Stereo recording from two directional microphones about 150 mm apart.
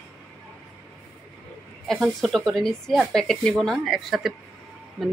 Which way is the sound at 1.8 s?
Centre (ahead or behind).